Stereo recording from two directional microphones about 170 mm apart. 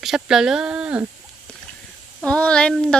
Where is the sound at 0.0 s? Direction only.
Centre (ahead or behind).